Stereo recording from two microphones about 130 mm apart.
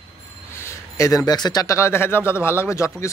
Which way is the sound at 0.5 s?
20° left (ahead or behind).